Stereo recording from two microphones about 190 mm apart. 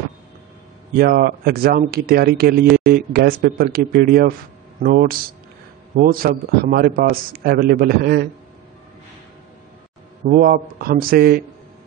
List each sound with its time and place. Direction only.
0.9 s a man's voice: 50° right (ahead or behind)
10.3 s a man's voice: 50° right (ahead or behind)